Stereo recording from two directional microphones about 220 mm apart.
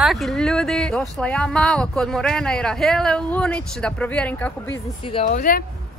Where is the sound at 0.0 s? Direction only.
Centre (ahead or behind).